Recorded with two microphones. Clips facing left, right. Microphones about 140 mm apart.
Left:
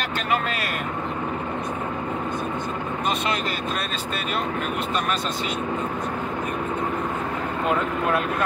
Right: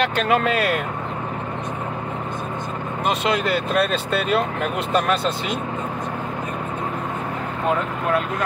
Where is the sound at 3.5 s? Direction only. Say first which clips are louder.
Right 8 dB; 65° right (ahead or behind).